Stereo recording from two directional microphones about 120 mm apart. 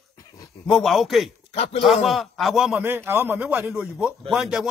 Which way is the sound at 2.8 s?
20° right (ahead or behind).